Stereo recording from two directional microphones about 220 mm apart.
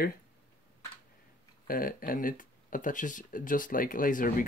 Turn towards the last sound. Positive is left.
turn(degrees=40)  # may be behind; listen again after turning